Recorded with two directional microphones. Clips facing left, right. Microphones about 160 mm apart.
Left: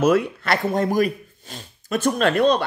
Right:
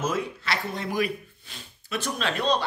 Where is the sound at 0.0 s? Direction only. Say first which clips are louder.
Left 10 dB; 65° left (ahead or behind).